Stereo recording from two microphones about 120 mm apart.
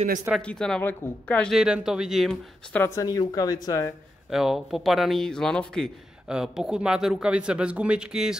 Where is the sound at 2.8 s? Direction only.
30° left (ahead or behind).